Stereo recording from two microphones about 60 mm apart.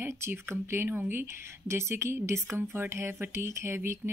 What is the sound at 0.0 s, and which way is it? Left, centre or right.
Speech, right.